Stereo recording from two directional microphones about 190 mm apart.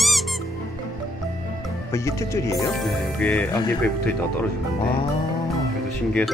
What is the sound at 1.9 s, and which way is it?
Speech, 15° left (ahead or behind).